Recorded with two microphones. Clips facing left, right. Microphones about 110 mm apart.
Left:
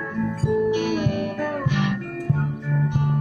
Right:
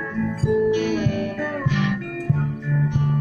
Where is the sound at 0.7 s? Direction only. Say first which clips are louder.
Right 1 dB; 10° left (ahead or behind).